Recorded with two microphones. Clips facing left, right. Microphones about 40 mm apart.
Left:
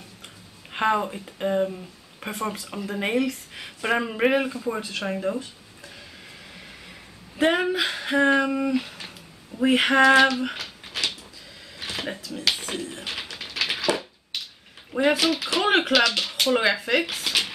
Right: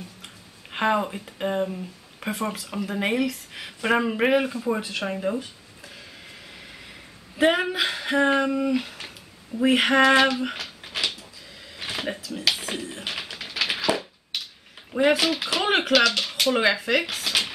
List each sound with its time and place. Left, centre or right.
0.7 s speech: centre
7.3 s speech: centre
8.5 s a sound: centre
9.6 s speech: centre
10.8 s a sound: centre
13.1 s typing: centre
14.9 s speech: centre